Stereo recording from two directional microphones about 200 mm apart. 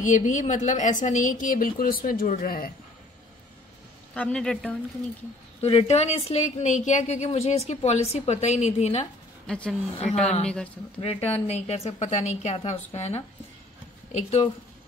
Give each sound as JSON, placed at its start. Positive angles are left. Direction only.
{"t": 0.0, "sound": "a woman's voice", "side_deg": 40}
{"t": 4.1, "sound": "a man's voice", "side_deg": 5}
{"t": 5.6, "sound": "a woman's voice", "side_deg": 30}
{"t": 9.5, "sound": "a man's voice", "side_deg": 5}
{"t": 11.0, "sound": "a woman's voice", "side_deg": 30}